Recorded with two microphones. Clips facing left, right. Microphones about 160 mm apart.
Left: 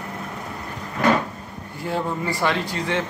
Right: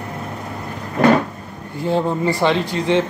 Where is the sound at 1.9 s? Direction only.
25° right (ahead or behind).